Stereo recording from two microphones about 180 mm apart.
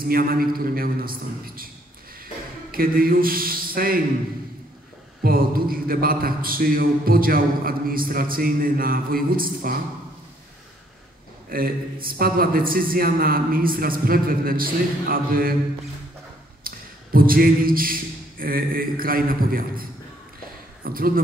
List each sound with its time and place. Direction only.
0.1 s speech: 55° right (ahead or behind)
2.7 s speech: 55° right (ahead or behind)
5.2 s speech: 55° right (ahead or behind)
11.4 s speech: 55° right (ahead or behind)
16.6 s speech: 50° right (ahead or behind)